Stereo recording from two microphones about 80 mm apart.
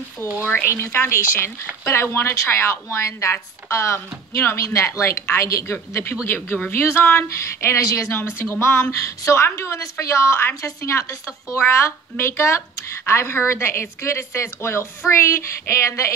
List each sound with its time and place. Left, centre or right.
0.7 s speech: left
7.7 s speech: left
8.2 s speech: left